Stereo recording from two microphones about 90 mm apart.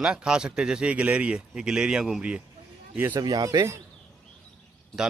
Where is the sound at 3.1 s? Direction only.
50° right (ahead or behind).